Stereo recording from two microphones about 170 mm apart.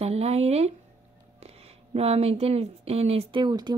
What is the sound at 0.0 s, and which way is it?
Speech, 40° right (ahead or behind).